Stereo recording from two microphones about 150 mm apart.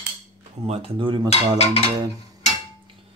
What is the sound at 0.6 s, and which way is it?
Speech, 40° right (ahead or behind).